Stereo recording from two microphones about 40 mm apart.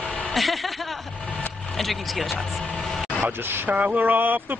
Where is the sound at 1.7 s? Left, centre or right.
Centre.